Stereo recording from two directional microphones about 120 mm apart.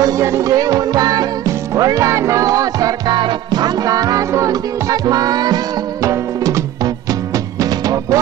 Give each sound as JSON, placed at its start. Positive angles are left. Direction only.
{"t": 0.0, "sound": "music", "side_deg": -25}